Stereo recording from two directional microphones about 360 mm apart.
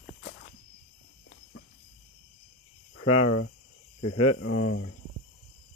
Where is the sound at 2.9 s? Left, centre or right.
Left.